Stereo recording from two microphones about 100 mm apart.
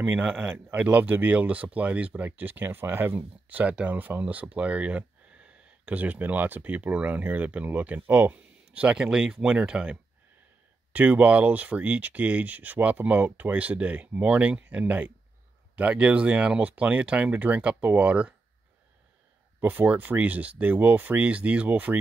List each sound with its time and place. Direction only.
0.0 s speech: 15° right (ahead or behind)
19.6 s speech: 20° right (ahead or behind)